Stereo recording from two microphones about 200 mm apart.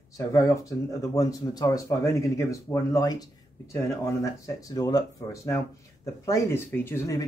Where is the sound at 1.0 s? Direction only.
15° left (ahead or behind).